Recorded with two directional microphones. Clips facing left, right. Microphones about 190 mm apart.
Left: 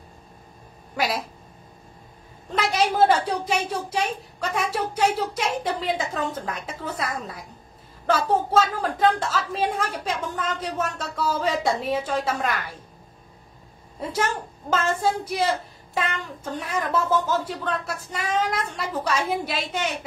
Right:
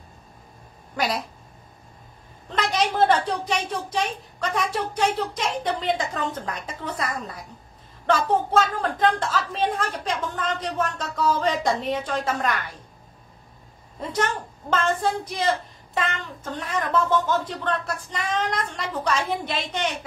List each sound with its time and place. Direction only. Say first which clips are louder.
0.9 s speech: even; 5° left (ahead or behind)
2.5 s a woman's voice: left 1 dB; 10° left (ahead or behind)
13.9 s a woman's voice: even; 5° left (ahead or behind)